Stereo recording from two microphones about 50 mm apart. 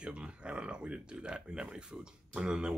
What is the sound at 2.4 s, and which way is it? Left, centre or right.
Speech, centre.